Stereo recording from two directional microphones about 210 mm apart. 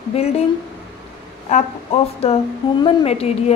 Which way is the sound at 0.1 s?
30° left (ahead or behind).